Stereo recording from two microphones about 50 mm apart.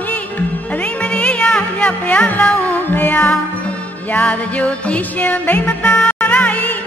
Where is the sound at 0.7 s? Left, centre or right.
Left.